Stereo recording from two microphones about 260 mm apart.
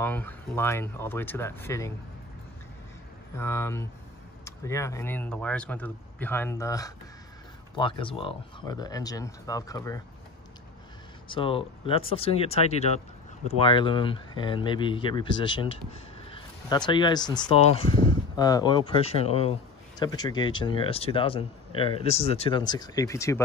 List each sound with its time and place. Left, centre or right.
0.0 s speech: centre
3.3 s speech: centre
11.2 s speech: centre